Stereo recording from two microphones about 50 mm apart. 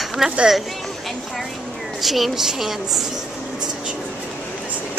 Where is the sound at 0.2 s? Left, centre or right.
Centre.